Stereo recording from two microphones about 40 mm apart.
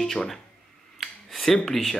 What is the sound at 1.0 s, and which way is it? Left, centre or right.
Finger snapping, centre.